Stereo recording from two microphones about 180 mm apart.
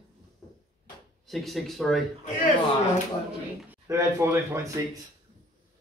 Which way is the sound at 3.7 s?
15° right (ahead or behind).